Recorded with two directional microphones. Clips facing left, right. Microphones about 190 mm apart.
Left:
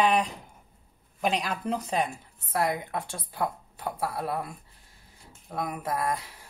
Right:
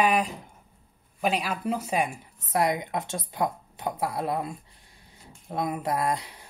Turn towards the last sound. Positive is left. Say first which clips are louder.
# right 2 dB
turn(degrees=-20)  # may be behind; listen again after turning